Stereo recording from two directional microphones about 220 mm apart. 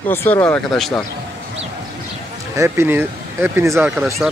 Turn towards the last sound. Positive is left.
turn(degrees=-10)  # may be behind; listen again after turning